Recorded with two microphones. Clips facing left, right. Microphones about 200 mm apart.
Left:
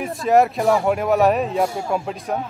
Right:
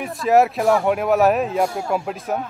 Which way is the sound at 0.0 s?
Centre (ahead or behind).